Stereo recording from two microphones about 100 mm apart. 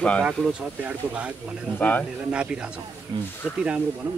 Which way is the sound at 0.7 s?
15° right (ahead or behind).